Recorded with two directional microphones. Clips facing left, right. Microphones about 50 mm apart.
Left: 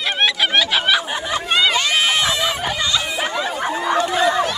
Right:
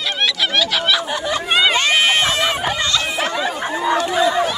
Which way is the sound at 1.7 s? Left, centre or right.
Right.